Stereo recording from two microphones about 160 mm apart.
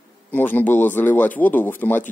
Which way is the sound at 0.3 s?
10° left (ahead or behind).